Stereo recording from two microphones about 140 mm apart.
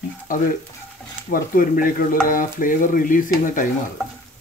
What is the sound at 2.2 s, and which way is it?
Speech, 75° left (ahead or behind).